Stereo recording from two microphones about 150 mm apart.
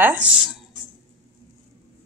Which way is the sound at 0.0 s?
15° right (ahead or behind).